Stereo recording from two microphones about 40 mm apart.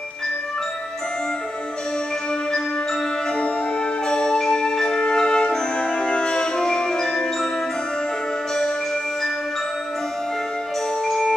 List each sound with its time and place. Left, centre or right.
4.1 s music: centre
11.1 s music: centre